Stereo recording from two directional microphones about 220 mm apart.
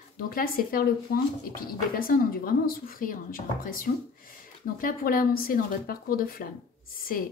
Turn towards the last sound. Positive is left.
turn(degrees=40)  # may be behind; listen again after turning